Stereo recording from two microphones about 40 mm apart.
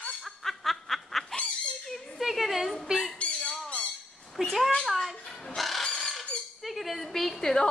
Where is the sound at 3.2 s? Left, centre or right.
Left.